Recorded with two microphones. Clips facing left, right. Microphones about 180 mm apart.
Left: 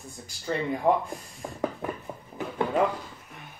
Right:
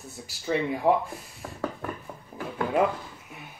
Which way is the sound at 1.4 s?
15° left (ahead or behind).